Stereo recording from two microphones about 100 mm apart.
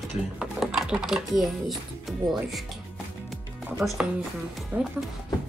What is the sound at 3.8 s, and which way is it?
Speech, 15° right (ahead or behind).